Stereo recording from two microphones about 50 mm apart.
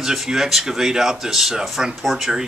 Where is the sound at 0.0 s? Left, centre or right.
Centre.